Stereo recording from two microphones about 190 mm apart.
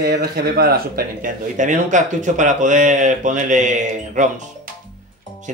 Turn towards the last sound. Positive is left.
turn(degrees=-40)  # may be behind; listen again after turning